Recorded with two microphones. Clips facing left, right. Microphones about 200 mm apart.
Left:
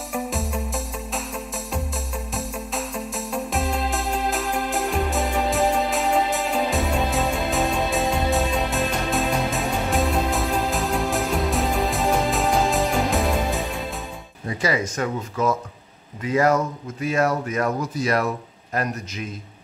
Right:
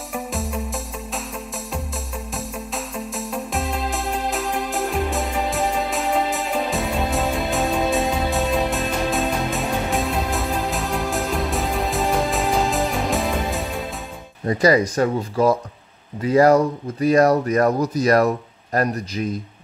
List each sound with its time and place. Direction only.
0.1 s music: centre (ahead or behind)
2.3 s music: centre (ahead or behind)
14.5 s speech: 40° right (ahead or behind)